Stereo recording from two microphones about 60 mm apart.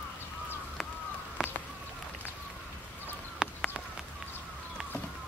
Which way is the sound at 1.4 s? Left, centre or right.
Centre.